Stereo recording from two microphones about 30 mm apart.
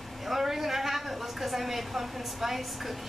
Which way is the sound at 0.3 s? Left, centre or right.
Centre.